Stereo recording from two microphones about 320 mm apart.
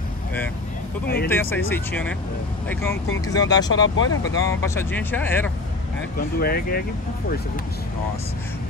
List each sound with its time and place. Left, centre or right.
1.0 s speech: left
1.3 s speech: centre
3.9 s speech: left
4.5 s speech: centre
6.1 s speech: left